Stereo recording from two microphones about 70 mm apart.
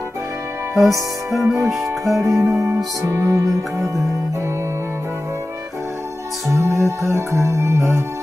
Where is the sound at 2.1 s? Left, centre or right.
Right.